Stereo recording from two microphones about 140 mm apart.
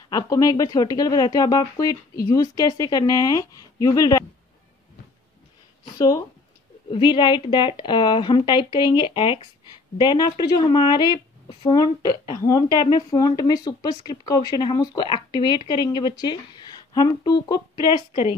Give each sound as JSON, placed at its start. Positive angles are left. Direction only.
{"t": 0.1, "sound": "speech", "side_deg": 25}
{"t": 5.9, "sound": "speech", "side_deg": 25}